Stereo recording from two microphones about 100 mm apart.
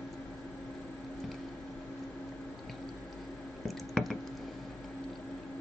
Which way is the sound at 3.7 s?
Centre (ahead or behind).